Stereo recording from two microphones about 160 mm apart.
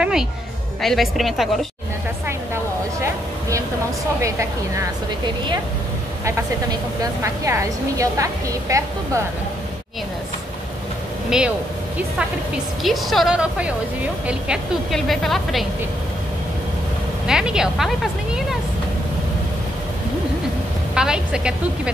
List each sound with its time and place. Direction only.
0.0 s a woman's voice: 5° right (ahead or behind)
2.2 s a sound: 15° right (ahead or behind)
4.2 s speech: 20° right (ahead or behind)
11.2 s speech: 5° right (ahead or behind)
12.8 s a woman's voice: centre (ahead or behind)
17.3 s a woman's voice: 5° right (ahead or behind)
20.9 s a woman's voice: 5° right (ahead or behind)